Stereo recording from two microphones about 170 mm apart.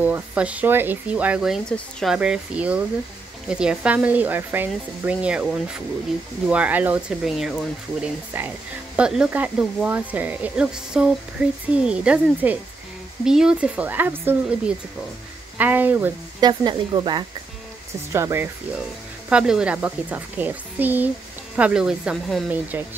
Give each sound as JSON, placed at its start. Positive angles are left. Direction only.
{"t": 0.0, "sound": "speech", "side_deg": -10}
{"t": 15.5, "sound": "speech", "side_deg": -10}
{"t": 16.3, "sound": "speech", "side_deg": -25}
{"t": 18.1, "sound": "speech", "side_deg": -15}
{"t": 19.2, "sound": "speech", "side_deg": -5}